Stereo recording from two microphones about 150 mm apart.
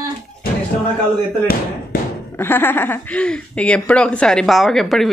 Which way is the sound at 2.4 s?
15° left (ahead or behind).